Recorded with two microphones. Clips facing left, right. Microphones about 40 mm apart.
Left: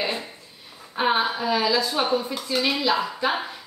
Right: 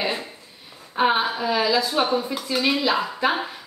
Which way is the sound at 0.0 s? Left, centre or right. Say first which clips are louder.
Right 1 dB; centre.